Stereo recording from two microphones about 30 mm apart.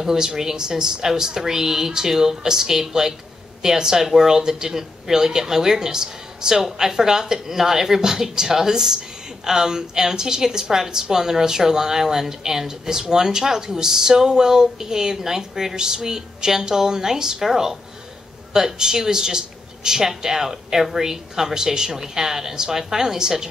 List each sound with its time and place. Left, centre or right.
0.0 s speech: centre
18.5 s speech: right